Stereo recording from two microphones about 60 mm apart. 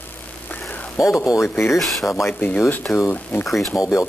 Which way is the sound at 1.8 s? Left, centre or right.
Centre.